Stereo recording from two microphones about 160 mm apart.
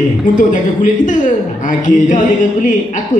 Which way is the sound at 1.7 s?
55° left (ahead or behind).